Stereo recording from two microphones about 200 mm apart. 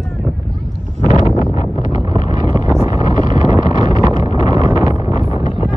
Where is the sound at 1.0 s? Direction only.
35° left (ahead or behind).